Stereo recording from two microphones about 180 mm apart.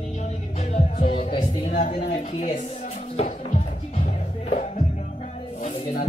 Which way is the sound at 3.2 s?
35° left (ahead or behind).